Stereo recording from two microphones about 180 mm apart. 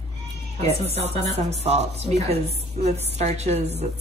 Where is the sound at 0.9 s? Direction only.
35° right (ahead or behind).